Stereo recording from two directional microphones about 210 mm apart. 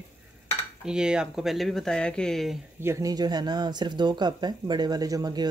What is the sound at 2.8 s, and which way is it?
Speech, 15° right (ahead or behind).